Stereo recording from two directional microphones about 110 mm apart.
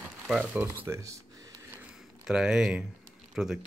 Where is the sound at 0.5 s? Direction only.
15° right (ahead or behind).